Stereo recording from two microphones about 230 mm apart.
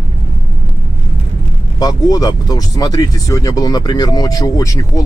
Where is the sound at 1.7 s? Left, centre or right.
Centre.